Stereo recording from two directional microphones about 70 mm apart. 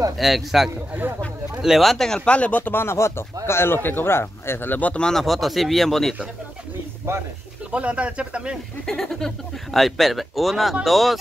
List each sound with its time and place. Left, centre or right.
0.2 s speech: centre; by 5.0 s left
5.0 s speech: centre
7.1 s speech: right
7.7 s speech: centre
8.8 s speech: centre